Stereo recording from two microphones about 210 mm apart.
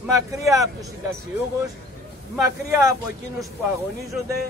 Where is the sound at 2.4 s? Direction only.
15° right (ahead or behind).